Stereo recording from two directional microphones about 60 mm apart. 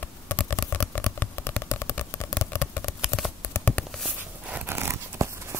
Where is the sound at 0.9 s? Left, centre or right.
Left.